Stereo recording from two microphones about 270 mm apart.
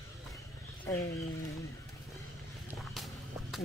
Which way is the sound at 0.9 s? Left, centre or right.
Centre.